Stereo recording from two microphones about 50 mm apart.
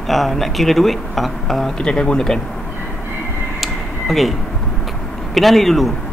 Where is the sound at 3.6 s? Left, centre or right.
Centre.